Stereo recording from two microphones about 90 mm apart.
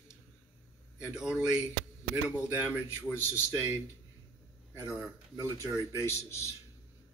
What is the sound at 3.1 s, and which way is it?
Speech, 30° left (ahead or behind).